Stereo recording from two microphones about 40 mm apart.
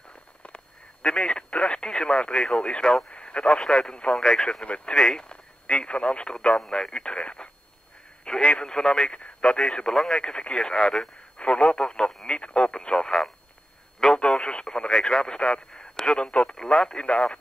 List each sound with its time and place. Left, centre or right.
1.0 s speech: left
4.5 s speech: left
9.1 s speech: left
9.7 s speech: centre
9.9 s speech: centre
10.2 s speech: left
11.9 s speech: centre
12.4 s speech: left